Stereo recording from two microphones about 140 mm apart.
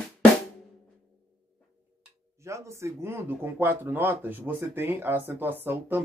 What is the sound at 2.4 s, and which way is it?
Speech, 20° right (ahead or behind).